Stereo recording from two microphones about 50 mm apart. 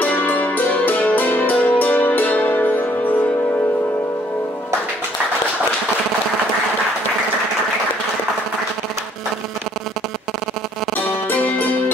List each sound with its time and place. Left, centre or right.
0.0 s music: left
11.1 s music: left